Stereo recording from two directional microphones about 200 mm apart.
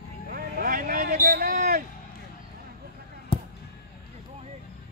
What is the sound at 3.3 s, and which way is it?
Basketball bounce, 30° left (ahead or behind).